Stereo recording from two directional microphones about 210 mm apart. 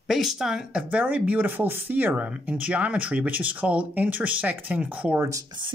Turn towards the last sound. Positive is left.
turn(degrees=-20)  # may be behind; listen again after turning